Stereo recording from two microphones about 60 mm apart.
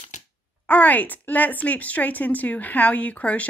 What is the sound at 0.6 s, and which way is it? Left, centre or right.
Speech, left.